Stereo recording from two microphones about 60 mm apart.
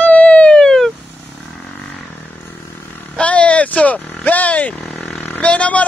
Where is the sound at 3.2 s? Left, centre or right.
Left.